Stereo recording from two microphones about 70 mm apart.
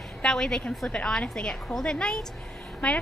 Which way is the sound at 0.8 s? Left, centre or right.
Centre.